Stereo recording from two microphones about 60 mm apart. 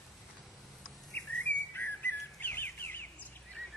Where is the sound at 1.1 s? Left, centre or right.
Left.